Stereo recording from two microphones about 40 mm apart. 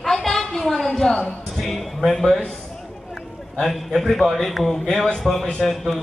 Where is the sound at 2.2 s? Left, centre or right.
Centre.